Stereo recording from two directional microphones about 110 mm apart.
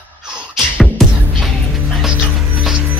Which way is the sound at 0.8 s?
Centre (ahead or behind).